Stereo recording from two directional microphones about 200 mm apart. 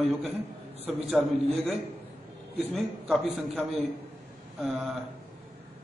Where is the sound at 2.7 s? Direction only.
Centre (ahead or behind).